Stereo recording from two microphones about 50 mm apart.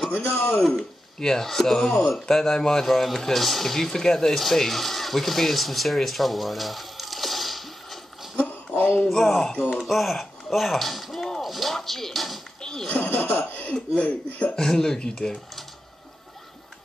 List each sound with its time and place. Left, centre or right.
0.4 s speech: left
0.7 s speech: centre
8.4 s a sound: left
9.1 s speech: centre
11.4 s music: centre
12.8 s speech: left
14.6 s speech: centre